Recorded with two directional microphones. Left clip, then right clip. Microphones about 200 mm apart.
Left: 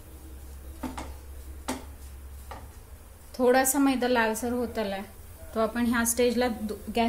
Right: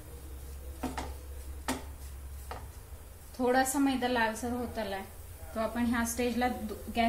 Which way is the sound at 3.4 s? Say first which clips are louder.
Left 5 dB; 55° left (ahead or behind).